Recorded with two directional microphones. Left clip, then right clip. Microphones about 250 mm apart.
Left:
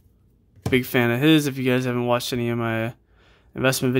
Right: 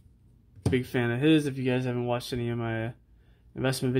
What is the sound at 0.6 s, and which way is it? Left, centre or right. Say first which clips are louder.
Speech: left 8 dB; centre.